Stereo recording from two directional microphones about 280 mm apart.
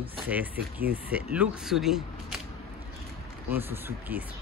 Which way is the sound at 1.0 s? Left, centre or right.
Centre.